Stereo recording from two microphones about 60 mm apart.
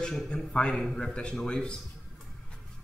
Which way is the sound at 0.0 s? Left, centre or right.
Centre.